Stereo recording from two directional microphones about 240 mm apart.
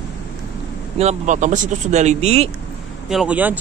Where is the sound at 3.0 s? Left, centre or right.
Centre.